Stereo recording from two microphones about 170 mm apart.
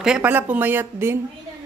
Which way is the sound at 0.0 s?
5° right (ahead or behind).